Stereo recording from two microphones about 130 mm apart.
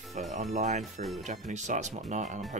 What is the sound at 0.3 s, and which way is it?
Speech, 65° right (ahead or behind).